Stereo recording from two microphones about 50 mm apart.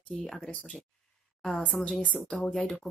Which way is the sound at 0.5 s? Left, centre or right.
Left.